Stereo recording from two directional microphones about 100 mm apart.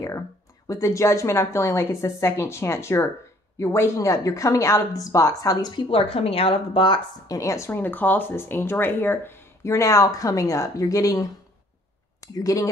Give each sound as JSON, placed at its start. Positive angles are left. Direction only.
{"t": 0.7, "sound": "a woman's voice", "side_deg": 30}
{"t": 5.8, "sound": "a woman's voice", "side_deg": 70}
{"t": 7.2, "sound": "speech", "side_deg": 35}